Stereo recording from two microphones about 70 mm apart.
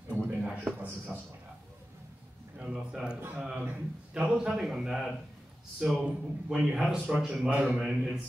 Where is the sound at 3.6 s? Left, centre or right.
Right.